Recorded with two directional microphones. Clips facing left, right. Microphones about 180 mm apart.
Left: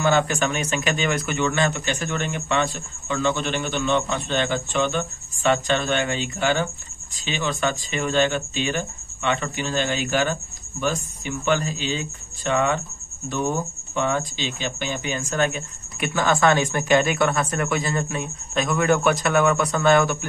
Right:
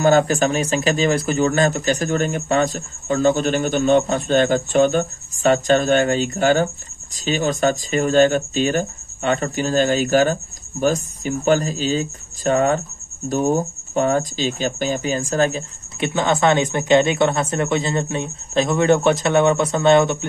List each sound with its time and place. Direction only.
0.0 s speech: 40° right (ahead or behind)
16.1 s speech: 20° right (ahead or behind)